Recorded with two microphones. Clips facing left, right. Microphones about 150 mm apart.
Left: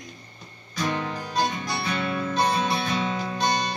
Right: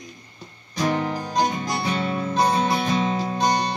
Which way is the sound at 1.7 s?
30° right (ahead or behind).